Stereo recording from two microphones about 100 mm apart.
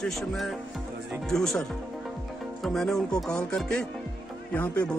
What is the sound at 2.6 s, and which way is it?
Music, 5° left (ahead or behind).